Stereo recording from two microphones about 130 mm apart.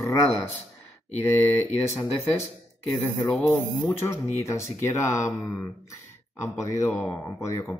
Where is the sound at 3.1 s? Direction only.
10° left (ahead or behind).